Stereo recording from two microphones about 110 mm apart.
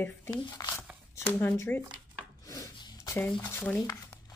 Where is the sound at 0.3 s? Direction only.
40° left (ahead or behind).